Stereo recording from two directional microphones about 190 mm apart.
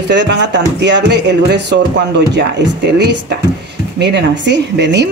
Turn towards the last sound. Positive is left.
turn(degrees=-65)  # may be behind; listen again after turning